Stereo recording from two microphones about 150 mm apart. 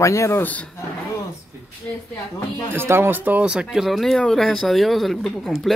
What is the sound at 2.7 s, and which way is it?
Speech, 15° right (ahead or behind).